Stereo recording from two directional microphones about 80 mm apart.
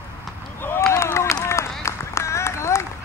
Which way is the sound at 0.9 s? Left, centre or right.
Left.